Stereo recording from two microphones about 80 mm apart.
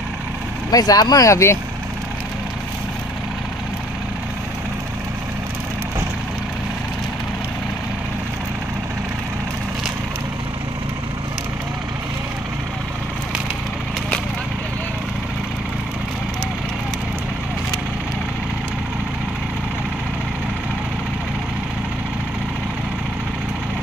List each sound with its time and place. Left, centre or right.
0.7 s speech: left